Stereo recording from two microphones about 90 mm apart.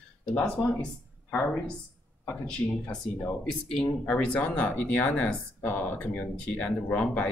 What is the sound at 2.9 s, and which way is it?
Speech, 10° left (ahead or behind).